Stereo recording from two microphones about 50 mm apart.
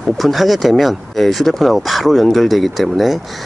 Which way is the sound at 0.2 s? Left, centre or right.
Centre.